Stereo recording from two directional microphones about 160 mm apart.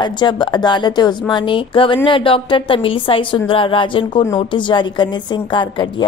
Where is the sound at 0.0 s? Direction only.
30° left (ahead or behind).